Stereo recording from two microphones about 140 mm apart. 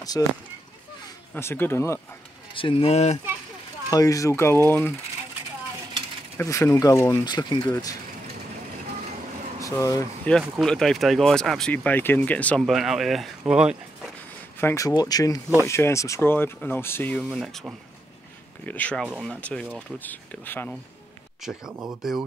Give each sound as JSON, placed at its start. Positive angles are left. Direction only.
{"t": 0.2, "sound": "speech", "side_deg": 20}
{"t": 2.5, "sound": "speech", "side_deg": 40}
{"t": 3.9, "sound": "speech", "side_deg": 25}
{"t": 6.3, "sound": "speech", "side_deg": 20}
{"t": 9.6, "sound": "speech", "side_deg": 25}
{"t": 10.3, "sound": "speech", "side_deg": 10}
{"t": 14.6, "sound": "speech", "side_deg": 20}
{"t": 17.2, "sound": "speech", "side_deg": 0}
{"t": 18.7, "sound": "speech", "side_deg": 10}
{"t": 21.4, "sound": "speech", "side_deg": -5}